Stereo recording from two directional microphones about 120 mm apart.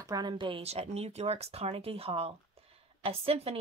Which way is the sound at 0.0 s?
35° right (ahead or behind).